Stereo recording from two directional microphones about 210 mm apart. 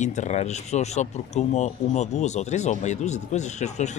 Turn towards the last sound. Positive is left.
turn(degrees=35)  # may be behind; listen again after turning